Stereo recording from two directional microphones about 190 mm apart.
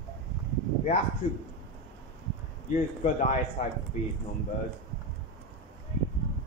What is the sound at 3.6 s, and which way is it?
Speech, 45° left (ahead or behind).